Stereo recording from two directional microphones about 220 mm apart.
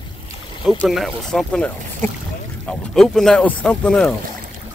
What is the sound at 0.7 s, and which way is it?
Speech, centre (ahead or behind).